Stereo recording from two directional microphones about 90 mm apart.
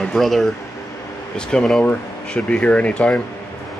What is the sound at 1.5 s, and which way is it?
Speech, 10° left (ahead or behind).